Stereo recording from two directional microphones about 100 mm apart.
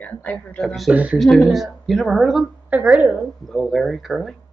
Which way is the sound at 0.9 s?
15° right (ahead or behind).